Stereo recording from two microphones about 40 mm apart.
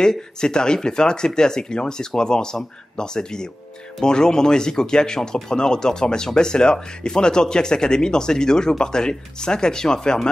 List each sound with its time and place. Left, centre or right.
0.0 s speech: centre